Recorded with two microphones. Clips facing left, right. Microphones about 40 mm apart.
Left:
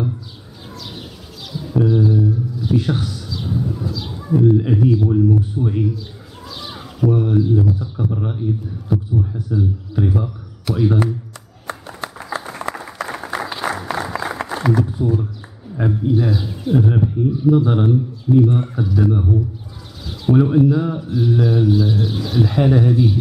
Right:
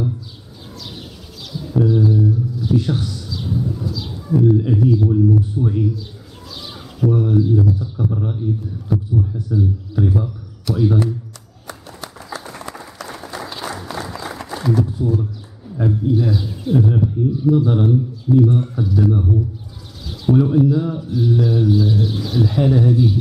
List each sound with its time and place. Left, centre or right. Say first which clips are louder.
1.5 s a sound: even; centre
3.4 s bird: even; centre
4.1 s speech: left 1 dB; centre
6.5 s bird: left 2 dB; centre
7.1 s a man's voice: even; centre
11.6 s clapping: left 5 dB; left
12.6 s applause: left 6 dB; left
14.4 s a sound: even; left
14.9 s a man's voice: left 1 dB; centre
16.8 s a man's voice: even; left; by 22.7 s centre
22.7 s a man's voice: even; centre